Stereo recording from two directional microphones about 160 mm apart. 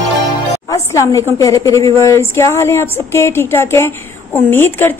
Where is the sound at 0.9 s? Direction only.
20° left (ahead or behind).